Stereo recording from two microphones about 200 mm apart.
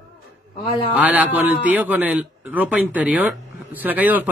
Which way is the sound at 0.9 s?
10° right (ahead or behind).